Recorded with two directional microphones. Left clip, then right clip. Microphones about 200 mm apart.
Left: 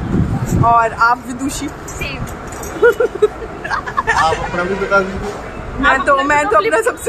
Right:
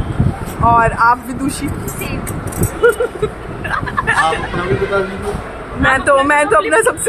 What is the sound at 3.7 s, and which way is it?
Speech, 15° left (ahead or behind).